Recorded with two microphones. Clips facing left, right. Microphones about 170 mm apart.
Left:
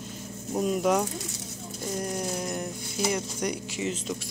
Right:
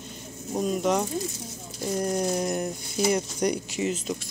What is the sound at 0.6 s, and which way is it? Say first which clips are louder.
Speech: even; 5° left (ahead or behind).